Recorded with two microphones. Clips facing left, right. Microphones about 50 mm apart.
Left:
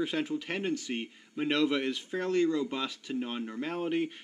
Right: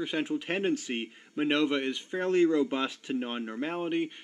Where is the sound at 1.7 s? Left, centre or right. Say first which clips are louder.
Right 1 dB; centre.